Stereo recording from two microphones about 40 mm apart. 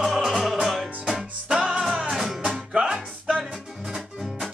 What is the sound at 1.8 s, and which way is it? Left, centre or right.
Music, centre.